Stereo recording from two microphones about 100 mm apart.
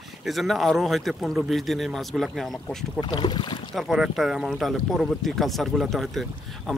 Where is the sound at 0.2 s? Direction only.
Centre (ahead or behind).